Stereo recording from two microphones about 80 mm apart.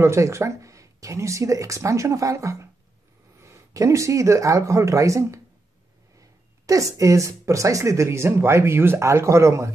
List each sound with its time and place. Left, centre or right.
0.0 s speech: right